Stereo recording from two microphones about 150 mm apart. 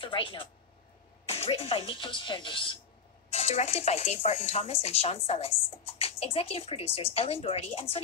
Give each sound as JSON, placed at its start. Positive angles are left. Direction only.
{"t": 0.0, "sound": "speech", "side_deg": 35}
{"t": 3.3, "sound": "speech", "side_deg": 45}